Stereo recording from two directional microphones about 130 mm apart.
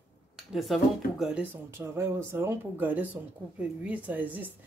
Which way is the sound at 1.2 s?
10° right (ahead or behind).